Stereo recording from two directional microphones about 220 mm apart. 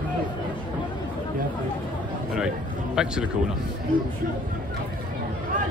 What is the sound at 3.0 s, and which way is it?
Speech, 5° right (ahead or behind).